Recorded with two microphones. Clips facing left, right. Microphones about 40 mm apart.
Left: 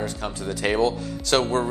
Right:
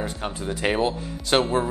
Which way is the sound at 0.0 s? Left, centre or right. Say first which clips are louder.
Even; right.